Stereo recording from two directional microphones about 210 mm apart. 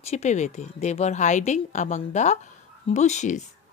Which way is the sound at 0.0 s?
30° left (ahead or behind).